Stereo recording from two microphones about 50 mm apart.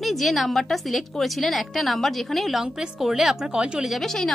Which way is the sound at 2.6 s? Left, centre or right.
Centre.